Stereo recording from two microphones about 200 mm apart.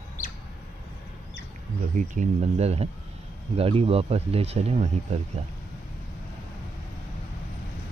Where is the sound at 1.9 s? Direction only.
40° right (ahead or behind).